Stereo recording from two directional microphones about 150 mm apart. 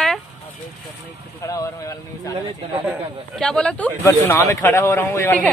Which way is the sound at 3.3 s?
5° left (ahead or behind).